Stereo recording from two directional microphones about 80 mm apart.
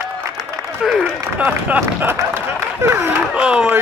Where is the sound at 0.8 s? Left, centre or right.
Centre.